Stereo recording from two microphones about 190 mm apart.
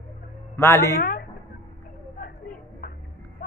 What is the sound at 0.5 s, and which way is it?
Speech, 10° left (ahead or behind).